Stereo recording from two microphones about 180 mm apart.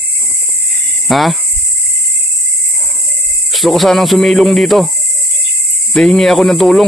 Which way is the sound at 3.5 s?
Centre (ahead or behind).